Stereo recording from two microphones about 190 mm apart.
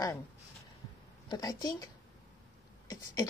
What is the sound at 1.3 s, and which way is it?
Speech, 20° left (ahead or behind).